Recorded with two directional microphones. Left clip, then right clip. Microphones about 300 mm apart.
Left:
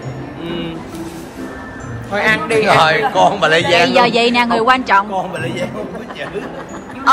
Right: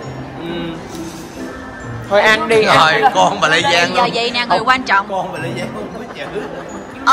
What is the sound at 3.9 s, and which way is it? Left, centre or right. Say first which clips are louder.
Speech: left 4 dB; left.